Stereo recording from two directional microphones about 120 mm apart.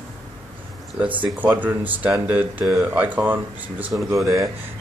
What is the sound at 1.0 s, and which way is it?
Speech, 15° right (ahead or behind).